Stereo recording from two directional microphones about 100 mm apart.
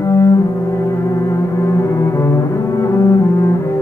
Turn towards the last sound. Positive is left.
turn(degrees=30)  # may be behind; listen again after turning